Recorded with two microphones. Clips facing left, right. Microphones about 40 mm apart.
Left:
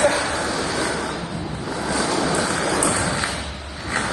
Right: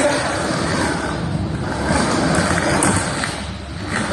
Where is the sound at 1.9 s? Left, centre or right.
Right.